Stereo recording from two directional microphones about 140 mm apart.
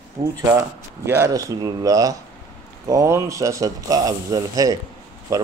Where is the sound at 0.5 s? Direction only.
20° right (ahead or behind).